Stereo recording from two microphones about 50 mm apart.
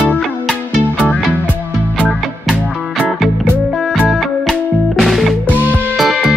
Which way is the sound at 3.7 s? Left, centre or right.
Centre.